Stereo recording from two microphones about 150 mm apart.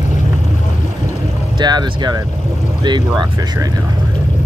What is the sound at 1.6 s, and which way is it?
Speech, 30° right (ahead or behind).